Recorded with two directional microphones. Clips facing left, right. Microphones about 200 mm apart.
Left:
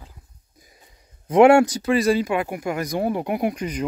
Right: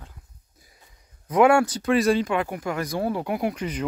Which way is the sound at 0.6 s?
20° left (ahead or behind).